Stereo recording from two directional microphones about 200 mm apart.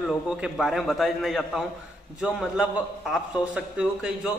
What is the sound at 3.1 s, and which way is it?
A man's voice, 5° right (ahead or behind).